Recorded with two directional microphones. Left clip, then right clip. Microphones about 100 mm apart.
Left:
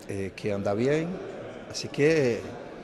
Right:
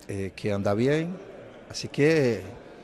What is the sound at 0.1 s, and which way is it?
A man's voice, 40° right (ahead or behind).